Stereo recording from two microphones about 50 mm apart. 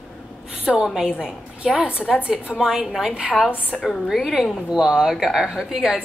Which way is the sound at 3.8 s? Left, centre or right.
Centre.